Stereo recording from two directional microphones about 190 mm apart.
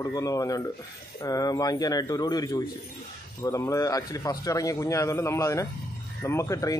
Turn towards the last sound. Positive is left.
turn(degrees=15)  # may be behind; listen again after turning